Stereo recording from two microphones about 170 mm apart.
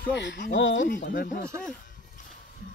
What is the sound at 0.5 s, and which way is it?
Speech, 90° left.